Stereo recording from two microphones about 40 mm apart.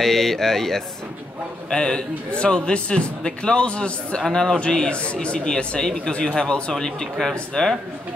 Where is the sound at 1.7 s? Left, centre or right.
Left.